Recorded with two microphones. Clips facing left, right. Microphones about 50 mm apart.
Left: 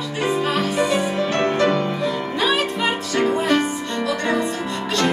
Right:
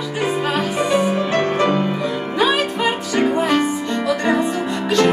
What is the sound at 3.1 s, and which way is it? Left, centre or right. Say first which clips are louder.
Music: right 1 dB; centre.